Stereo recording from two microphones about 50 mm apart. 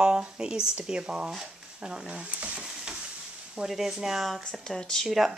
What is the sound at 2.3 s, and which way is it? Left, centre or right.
Stir, right.